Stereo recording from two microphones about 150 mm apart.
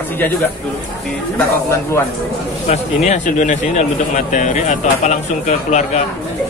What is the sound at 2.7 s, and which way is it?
Speech, 50° left (ahead or behind).